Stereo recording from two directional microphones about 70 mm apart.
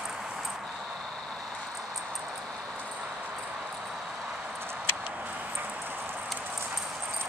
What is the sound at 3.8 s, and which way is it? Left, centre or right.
Vehicle, centre.